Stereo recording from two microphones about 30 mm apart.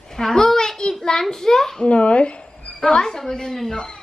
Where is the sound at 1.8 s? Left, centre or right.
Left.